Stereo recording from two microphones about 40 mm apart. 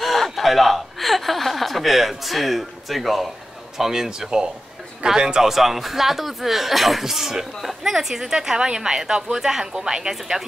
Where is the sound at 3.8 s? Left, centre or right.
Centre.